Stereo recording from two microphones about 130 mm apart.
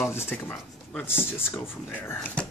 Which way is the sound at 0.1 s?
15° left (ahead or behind).